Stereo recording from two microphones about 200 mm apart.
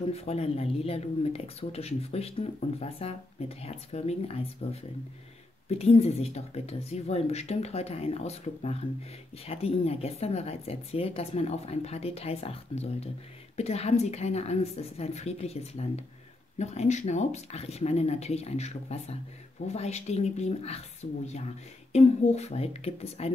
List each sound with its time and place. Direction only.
0.1 s speech: 30° left (ahead or behind)